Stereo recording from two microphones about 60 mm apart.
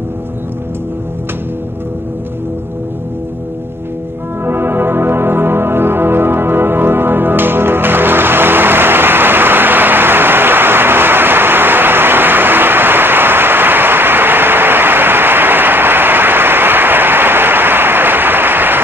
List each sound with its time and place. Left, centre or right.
4.5 s music: right